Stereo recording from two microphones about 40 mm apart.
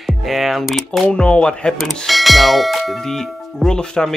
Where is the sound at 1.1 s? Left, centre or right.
Left.